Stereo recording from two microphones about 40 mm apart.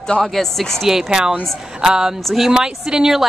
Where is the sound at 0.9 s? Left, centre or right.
Centre.